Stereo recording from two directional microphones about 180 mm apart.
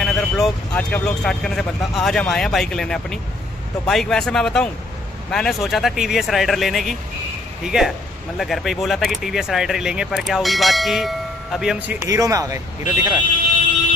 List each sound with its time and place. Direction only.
0.0 s speech: 5° left (ahead or behind)
12.0 s speech: 20° right (ahead or behind)